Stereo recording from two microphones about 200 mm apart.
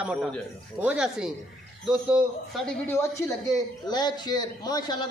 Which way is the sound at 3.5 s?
20° left (ahead or behind).